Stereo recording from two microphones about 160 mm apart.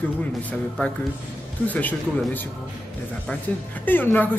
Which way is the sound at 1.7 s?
10° left (ahead or behind).